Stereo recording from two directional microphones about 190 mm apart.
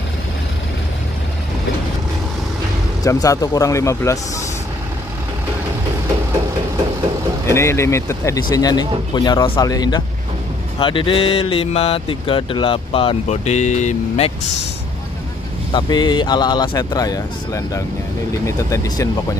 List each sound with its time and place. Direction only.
3.0 s speech: 20° left (ahead or behind)
7.4 s speech: 15° left (ahead or behind); by 14.5 s 35° left (ahead or behind)
15.7 s speech: 25° left (ahead or behind)